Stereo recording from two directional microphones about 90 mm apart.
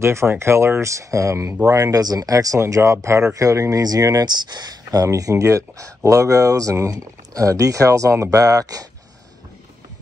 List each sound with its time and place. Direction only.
0.0 s speech: 30° right (ahead or behind)